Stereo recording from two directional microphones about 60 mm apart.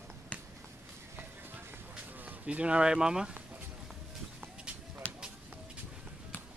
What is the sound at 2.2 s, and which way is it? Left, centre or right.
Speech, right.